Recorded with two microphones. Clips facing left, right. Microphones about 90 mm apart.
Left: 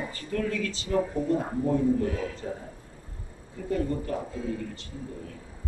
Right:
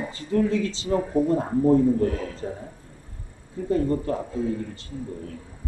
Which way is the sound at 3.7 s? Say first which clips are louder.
Right 5 dB; 30° right (ahead or behind).